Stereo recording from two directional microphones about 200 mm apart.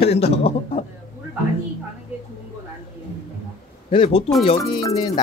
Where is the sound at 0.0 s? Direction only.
30° left (ahead or behind).